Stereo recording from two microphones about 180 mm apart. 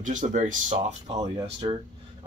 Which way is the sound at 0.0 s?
45° right (ahead or behind).